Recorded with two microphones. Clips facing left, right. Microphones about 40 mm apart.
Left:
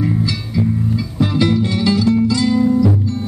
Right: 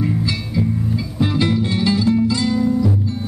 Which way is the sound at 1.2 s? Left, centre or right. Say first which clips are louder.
Left 3 dB; centre.